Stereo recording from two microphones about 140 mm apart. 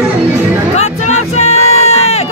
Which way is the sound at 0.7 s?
50° left (ahead or behind).